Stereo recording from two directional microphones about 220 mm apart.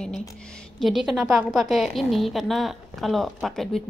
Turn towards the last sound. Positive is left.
turn(degrees=0)  # may be behind; listen again after turning